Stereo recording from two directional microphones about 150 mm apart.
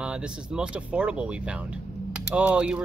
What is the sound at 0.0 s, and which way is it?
Speech, 5° right (ahead or behind).